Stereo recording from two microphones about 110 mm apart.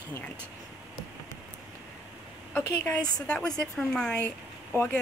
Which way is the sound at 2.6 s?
10° left (ahead or behind).